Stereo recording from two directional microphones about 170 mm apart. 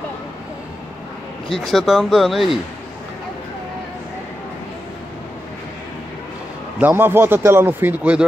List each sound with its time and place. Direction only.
1.5 s speech: centre (ahead or behind)
6.8 s speech: 10° right (ahead or behind)